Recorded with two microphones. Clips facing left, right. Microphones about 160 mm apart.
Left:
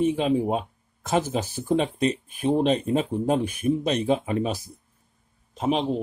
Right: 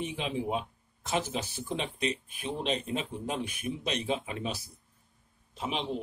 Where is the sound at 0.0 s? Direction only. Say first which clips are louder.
Left 11 dB; 45° left (ahead or behind).